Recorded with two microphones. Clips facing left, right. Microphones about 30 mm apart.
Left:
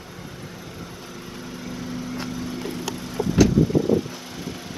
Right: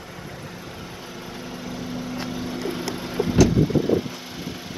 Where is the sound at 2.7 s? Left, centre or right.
Right.